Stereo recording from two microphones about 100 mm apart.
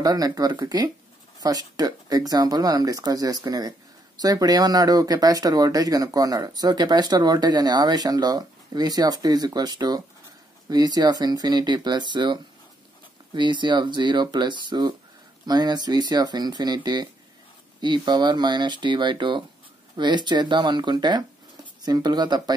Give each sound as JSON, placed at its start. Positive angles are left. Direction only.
{"t": 0.0, "sound": "speech", "side_deg": -40}